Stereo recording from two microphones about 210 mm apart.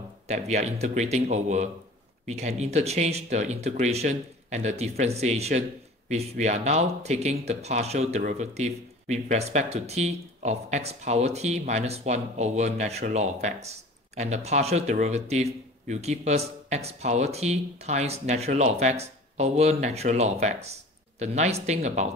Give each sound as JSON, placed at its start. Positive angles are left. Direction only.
{"t": 0.3, "sound": "speech", "side_deg": -30}